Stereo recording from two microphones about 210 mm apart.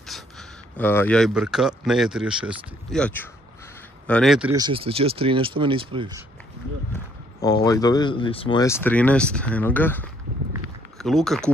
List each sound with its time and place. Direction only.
0.7 s speech: 10° left (ahead or behind)
4.6 s speech: 25° right (ahead or behind)
6.9 s a sound: 15° left (ahead or behind)
7.6 s speech: 15° left (ahead or behind); by 11.5 s centre (ahead or behind)